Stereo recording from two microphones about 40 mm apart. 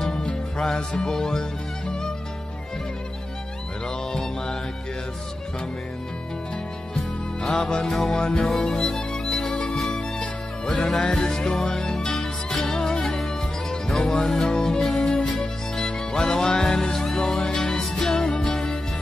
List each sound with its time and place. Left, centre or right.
0.0 s music: centre
4.1 s mantra: centre
7.8 s music: centre
8.1 s music: centre
8.4 s music: centre
8.6 s music: centre
10.7 s music: centre
15.2 s music: centre
15.8 s music: left